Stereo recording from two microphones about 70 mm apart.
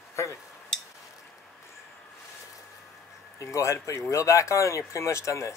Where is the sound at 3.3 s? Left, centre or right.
Left.